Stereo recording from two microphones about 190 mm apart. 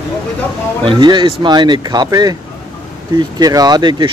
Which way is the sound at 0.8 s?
25° right (ahead or behind).